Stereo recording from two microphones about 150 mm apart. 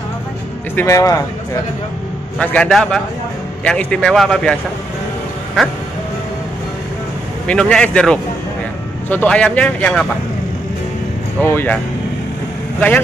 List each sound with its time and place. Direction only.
0.7 s speech: 20° left (ahead or behind)
2.3 s speech: 5° left (ahead or behind)
5.6 s speech: centre (ahead or behind)
7.4 s speech: 5° left (ahead or behind)
11.4 s speech: 10° left (ahead or behind)